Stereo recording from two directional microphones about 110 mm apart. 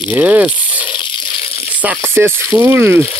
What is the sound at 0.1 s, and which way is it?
Speech, 15° right (ahead or behind).